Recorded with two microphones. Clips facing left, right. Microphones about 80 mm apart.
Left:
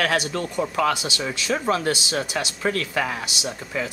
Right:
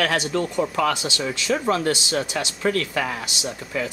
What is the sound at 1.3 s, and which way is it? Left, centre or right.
Speech, left.